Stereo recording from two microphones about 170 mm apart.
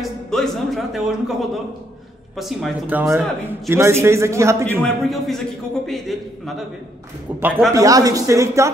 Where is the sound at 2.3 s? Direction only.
Centre (ahead or behind); by 4.6 s 15° right (ahead or behind).